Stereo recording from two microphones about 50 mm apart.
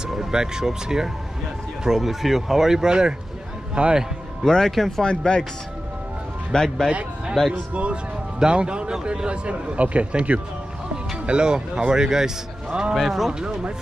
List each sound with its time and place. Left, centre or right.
0.1 s a man's voice: centre
4.5 s speech: centre
5.0 s speech: centre
6.5 s speech: centre
6.9 s a man's voice: right; by 12.3 s centre
12.9 s speech: centre
13.3 s speech: centre